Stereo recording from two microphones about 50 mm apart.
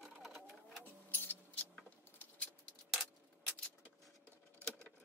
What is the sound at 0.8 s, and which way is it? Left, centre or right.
Music, left.